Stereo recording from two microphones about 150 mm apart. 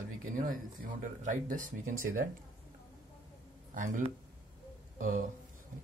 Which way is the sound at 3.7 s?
60° right (ahead or behind).